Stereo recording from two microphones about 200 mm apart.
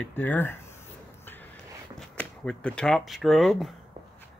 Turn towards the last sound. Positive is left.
turn(degrees=0)  # may be behind; listen again after turning